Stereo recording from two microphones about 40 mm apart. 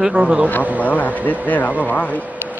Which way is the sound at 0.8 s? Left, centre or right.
Left.